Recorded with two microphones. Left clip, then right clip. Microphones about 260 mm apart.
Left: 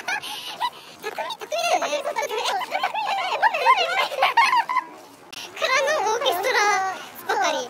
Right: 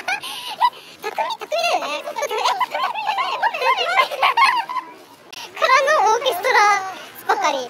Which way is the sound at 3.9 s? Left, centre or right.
Centre.